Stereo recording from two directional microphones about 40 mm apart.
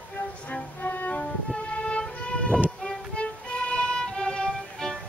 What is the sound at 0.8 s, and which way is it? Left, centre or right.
Music, left.